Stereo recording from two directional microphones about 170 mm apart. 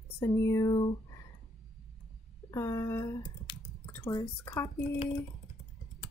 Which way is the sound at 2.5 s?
15° left (ahead or behind).